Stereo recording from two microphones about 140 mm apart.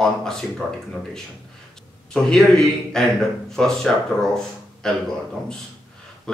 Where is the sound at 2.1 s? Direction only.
5° left (ahead or behind).